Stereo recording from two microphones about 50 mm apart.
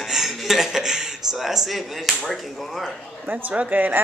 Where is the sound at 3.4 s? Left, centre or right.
Right.